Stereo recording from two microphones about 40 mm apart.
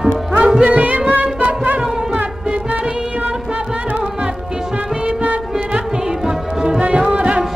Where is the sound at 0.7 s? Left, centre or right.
Right.